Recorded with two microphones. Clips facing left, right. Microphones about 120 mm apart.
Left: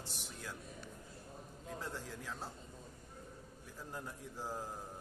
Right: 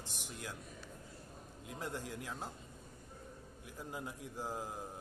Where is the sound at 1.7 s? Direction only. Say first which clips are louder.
Right 2 dB; 15° right (ahead or behind).